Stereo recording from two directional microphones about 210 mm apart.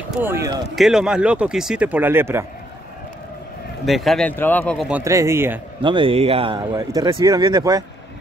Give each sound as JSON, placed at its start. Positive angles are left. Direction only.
{"t": 0.1, "sound": "speech", "side_deg": -10}
{"t": 0.7, "sound": "speech", "side_deg": 0}
{"t": 3.8, "sound": "speech", "side_deg": 0}
{"t": 4.8, "sound": "speech", "side_deg": -10}
{"t": 5.8, "sound": "speech", "side_deg": -25}